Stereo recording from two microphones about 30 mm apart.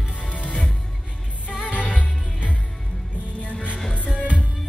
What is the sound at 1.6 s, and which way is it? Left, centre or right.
Music, right.